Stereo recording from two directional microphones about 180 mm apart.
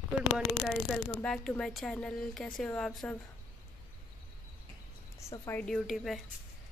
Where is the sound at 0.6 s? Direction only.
5° left (ahead or behind).